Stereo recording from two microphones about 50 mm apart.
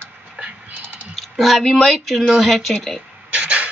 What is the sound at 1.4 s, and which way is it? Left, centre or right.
Speech, centre.